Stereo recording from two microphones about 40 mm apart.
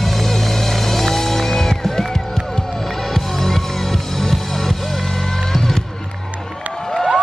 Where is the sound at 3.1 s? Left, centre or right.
Centre.